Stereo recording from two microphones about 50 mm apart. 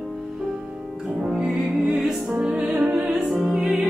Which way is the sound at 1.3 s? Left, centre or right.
Centre.